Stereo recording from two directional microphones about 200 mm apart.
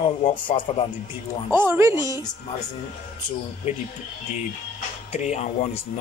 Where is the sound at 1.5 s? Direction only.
10° right (ahead or behind).